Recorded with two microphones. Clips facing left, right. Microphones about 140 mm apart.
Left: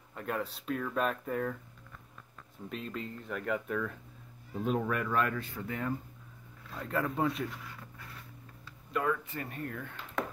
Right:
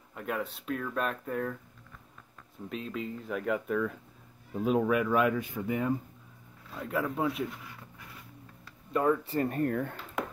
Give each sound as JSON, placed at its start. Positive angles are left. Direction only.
{"t": 0.1, "sound": "speech", "side_deg": -5}
{"t": 2.7, "sound": "speech", "side_deg": 0}
{"t": 6.7, "sound": "speech", "side_deg": -5}
{"t": 8.9, "sound": "speech", "side_deg": -30}